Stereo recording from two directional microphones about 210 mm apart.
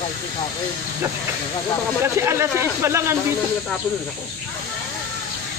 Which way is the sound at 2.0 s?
10° right (ahead or behind).